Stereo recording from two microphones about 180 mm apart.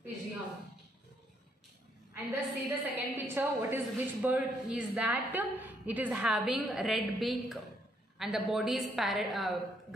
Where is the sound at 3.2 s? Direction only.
10° right (ahead or behind).